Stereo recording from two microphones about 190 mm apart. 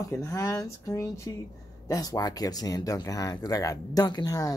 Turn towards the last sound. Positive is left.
turn(degrees=20)  # may be behind; listen again after turning